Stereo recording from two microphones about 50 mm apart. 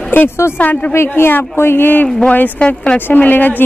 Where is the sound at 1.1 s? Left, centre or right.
Left.